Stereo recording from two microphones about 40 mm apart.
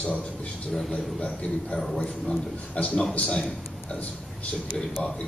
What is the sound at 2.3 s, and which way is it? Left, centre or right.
A man's voice, left.